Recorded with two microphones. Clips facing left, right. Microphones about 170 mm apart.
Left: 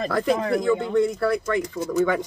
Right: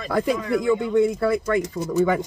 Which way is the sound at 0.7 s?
10° right (ahead or behind).